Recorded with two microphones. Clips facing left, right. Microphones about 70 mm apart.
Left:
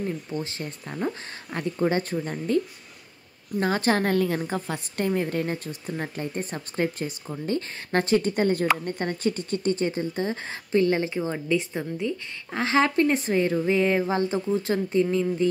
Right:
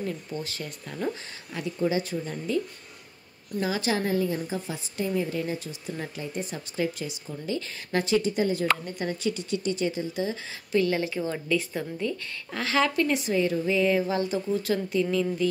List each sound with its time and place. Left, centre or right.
0.3 s speech: left
1.5 s speech: left
3.6 s a woman's voice: left